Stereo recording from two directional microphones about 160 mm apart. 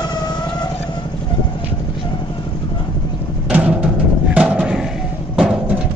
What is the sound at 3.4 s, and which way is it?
Music, 10° right (ahead or behind).